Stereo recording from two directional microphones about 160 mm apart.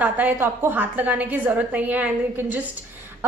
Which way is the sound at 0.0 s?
10° right (ahead or behind).